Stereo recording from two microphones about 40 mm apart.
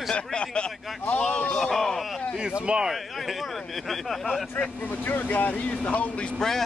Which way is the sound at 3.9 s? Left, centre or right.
Centre.